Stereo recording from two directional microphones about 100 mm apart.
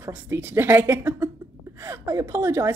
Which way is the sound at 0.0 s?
25° right (ahead or behind).